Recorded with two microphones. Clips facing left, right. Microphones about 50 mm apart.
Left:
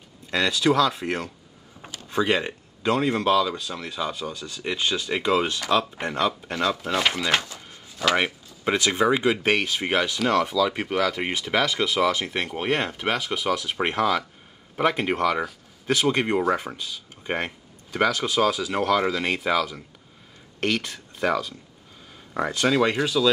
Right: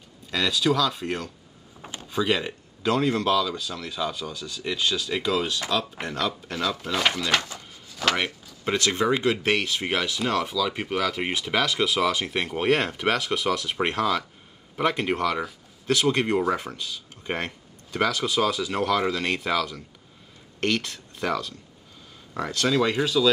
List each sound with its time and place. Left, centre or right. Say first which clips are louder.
0.3 s speech: left 2 dB; centre
1.8 s a sound: right 1 dB; centre
2.1 s speech: left 2 dB; centre
6.8 s speech: left 1 dB; centre
7.5 s a sound: right 1 dB; centre
8.6 s speech: left 2 dB; centre
23.0 s speech: even; centre